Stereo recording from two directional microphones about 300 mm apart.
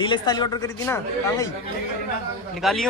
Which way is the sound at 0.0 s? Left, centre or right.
Centre.